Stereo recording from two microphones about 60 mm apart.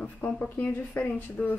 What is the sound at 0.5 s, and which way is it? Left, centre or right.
Speech, left.